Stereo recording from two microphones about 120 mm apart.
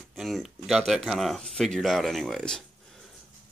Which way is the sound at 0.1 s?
Centre (ahead or behind).